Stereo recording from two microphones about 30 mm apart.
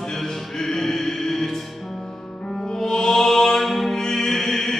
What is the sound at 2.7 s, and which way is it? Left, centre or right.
Music, centre.